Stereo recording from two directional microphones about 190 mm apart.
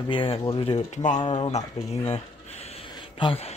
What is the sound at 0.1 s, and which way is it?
Speech, 25° left (ahead or behind).